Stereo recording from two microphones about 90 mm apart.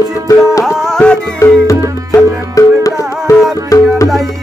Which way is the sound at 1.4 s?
35° left (ahead or behind).